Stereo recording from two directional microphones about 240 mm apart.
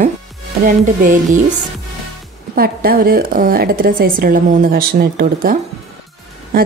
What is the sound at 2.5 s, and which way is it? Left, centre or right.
A woman's voice, right.